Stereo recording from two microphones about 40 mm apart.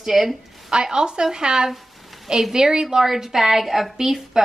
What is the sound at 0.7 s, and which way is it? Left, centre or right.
A woman's voice, right.